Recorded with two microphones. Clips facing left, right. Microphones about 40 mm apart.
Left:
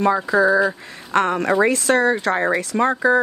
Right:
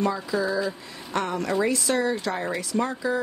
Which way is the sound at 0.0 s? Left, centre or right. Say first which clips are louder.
Left 9 dB; left.